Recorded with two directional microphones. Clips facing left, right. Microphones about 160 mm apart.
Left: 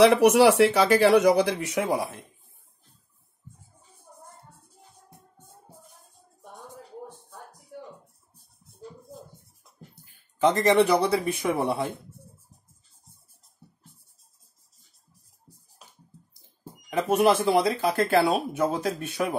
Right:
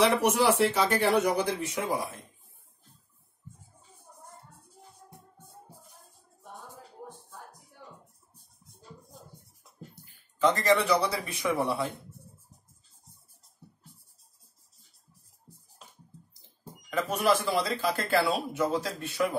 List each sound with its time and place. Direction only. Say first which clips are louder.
0.0 s speech: left 7 dB; 80° left
10.8 s speech: left 6 dB; 55° left (ahead or behind)
16.9 s speech: left 5 dB; 55° left (ahead or behind)